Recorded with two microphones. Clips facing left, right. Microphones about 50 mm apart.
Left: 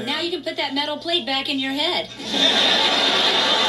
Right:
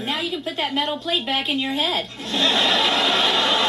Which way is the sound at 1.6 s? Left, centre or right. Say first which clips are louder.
Even; right.